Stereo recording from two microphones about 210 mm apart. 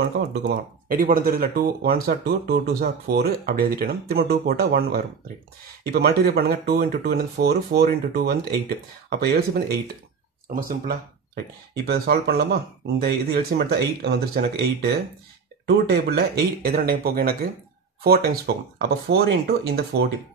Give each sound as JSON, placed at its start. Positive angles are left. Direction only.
{"t": 0.3, "sound": "speech", "side_deg": -45}